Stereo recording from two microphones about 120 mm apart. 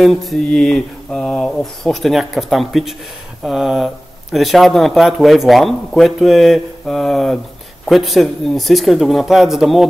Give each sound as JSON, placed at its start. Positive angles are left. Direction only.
{"t": 0.0, "sound": "speech", "side_deg": 0}